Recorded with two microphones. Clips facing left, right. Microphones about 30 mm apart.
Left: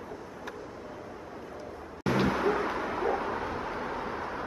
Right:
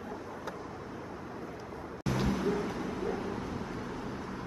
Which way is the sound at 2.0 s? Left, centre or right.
Left.